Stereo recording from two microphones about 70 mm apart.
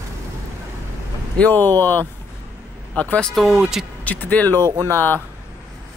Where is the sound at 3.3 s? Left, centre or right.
Centre.